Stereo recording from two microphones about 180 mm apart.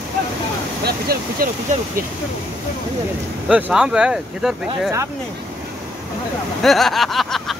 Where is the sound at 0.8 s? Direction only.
55° right (ahead or behind).